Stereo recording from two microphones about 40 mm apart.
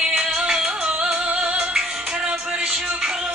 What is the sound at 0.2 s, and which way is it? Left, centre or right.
Music, centre.